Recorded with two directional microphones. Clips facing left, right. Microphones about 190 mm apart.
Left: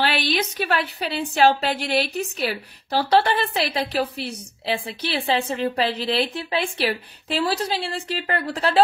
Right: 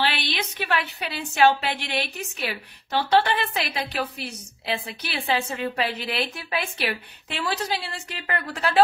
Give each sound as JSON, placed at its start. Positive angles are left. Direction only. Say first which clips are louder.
{"t": 0.0, "sound": "a woman's voice", "louder": "left 4 dB", "side_deg": 40}